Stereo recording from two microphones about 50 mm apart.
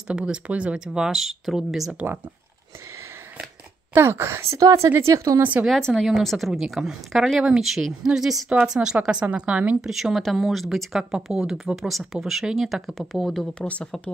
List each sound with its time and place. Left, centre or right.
0.1 s speech: centre
0.5 s a woman's voice: right
0.7 s speech: centre
3.9 s a woman's voice: right
5.4 s a woman's voice: right
5.7 s speech: centre
6.3 s speech: centre
9.2 s a woman's voice: right
9.8 s speech: centre
13.6 s speech: left